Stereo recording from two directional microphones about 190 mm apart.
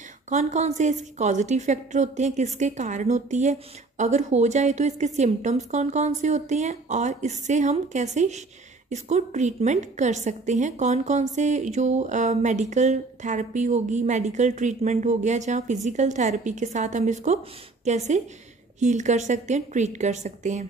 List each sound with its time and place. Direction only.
0.3 s a woman's voice: 40° right (ahead or behind)